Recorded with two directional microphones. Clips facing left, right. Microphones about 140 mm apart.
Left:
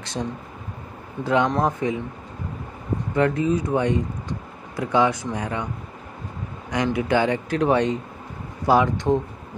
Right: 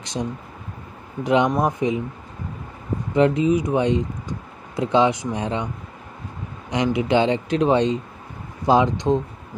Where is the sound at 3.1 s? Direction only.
20° right (ahead or behind).